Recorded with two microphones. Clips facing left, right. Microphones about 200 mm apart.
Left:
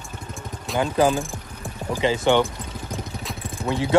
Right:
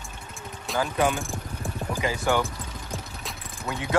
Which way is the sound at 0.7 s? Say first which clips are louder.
Left 5 dB; 30° left (ahead or behind).